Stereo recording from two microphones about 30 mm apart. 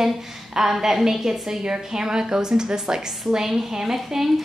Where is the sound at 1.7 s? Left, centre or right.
Right.